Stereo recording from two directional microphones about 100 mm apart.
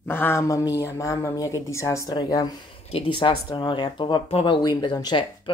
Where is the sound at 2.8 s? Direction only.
70° left (ahead or behind).